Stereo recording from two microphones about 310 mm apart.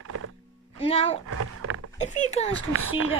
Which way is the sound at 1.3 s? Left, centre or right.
Right.